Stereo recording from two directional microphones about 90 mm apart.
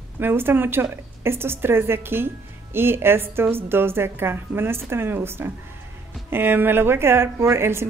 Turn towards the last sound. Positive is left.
turn(degrees=-30)  # may be behind; listen again after turning